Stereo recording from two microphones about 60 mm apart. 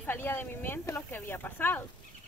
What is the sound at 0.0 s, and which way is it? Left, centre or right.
Speech, left.